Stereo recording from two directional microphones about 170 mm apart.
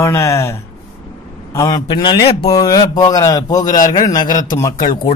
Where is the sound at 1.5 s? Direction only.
20° left (ahead or behind).